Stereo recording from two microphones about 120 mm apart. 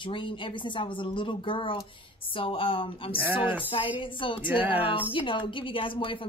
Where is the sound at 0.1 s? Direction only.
45° left (ahead or behind).